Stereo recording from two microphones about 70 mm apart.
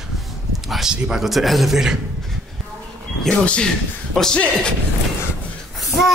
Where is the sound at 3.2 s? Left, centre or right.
Centre.